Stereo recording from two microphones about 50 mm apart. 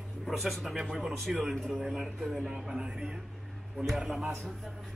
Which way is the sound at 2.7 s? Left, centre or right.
Centre.